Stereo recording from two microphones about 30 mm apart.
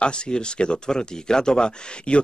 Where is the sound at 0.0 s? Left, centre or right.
Left.